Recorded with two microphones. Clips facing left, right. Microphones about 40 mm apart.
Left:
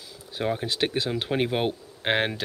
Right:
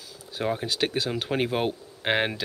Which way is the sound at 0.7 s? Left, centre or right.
Left.